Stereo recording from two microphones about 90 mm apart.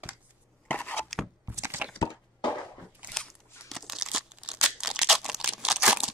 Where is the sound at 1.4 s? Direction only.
30° right (ahead or behind).